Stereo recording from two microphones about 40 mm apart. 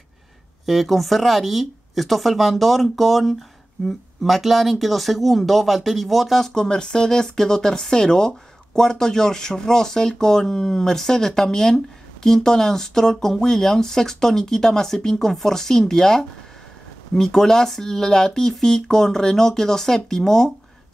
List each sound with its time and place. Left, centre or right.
0.7 s speech: centre
6.4 s speech: centre